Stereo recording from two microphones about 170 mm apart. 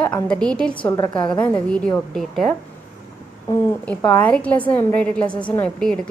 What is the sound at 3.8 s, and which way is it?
A woman's voice, 10° left (ahead or behind).